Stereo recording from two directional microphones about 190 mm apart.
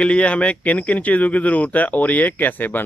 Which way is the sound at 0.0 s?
5° left (ahead or behind).